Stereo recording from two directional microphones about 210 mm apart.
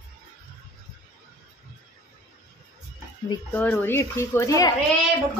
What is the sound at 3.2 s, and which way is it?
A woman's voice, 10° left (ahead or behind).